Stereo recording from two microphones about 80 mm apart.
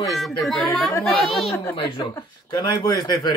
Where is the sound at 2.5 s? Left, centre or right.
Left.